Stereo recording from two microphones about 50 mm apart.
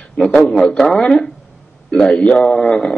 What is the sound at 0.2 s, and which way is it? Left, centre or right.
Speech, left.